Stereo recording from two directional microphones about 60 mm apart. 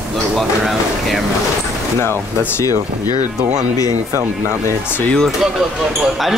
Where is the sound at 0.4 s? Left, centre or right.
Centre.